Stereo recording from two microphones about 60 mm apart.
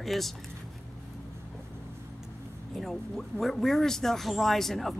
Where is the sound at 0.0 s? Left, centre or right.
Centre.